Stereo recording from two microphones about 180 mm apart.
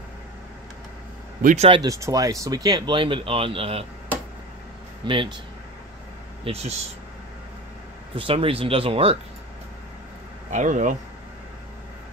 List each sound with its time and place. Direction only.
1.4 s speech: 40° right (ahead or behind)
1.7 s speech: 20° right (ahead or behind)
5.0 s speech: 30° right (ahead or behind)
6.4 s speech: 35° right (ahead or behind)
8.2 s speech: 30° right (ahead or behind)
10.5 s speech: 40° right (ahead or behind)